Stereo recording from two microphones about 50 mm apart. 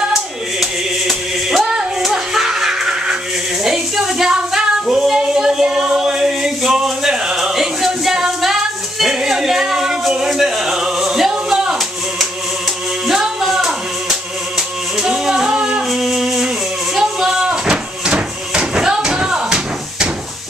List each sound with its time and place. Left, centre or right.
0.1 s music: centre
3.6 s a sound: centre
9.0 s music: centre
13.0 s music: centre
15.5 s music: right
15.9 s music: centre
16.9 s a sound: centre